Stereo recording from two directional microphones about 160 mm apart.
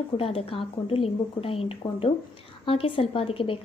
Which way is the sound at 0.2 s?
35° left (ahead or behind).